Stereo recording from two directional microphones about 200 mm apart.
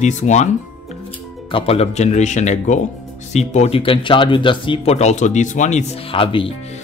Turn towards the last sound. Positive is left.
turn(degrees=25)  # may be behind; listen again after turning